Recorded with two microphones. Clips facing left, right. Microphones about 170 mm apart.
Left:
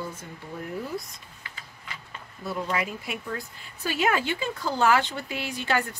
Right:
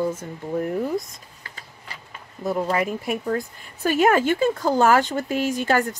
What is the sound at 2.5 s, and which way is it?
Speech, 45° right (ahead or behind).